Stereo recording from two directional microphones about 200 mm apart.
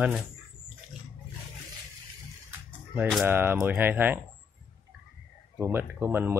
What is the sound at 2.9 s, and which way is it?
Speech, centre (ahead or behind).